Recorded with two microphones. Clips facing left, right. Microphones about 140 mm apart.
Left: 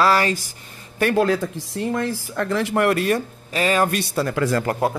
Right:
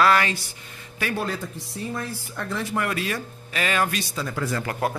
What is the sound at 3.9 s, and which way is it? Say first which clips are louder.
Speech: left 7 dB; 60° left (ahead or behind).